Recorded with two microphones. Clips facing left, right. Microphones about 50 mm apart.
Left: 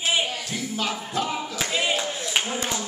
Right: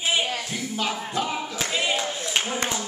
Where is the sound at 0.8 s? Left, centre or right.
Centre.